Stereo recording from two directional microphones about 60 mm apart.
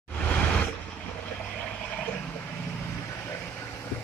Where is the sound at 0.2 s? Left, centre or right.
Centre.